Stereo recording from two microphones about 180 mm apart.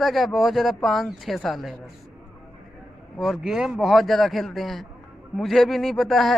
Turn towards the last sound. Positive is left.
turn(degrees=0)  # may be behind; listen again after turning